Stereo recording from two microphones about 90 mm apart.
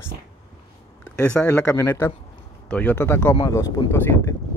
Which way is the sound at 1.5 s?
30° left (ahead or behind).